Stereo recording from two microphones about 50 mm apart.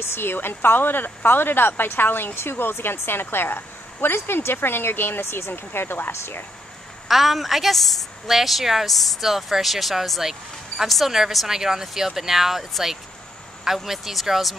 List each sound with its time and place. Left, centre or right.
0.0 s a woman's voice: left
7.1 s a woman's voice: centre